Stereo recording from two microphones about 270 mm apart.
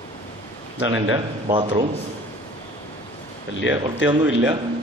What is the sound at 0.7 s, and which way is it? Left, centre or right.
Speech, centre.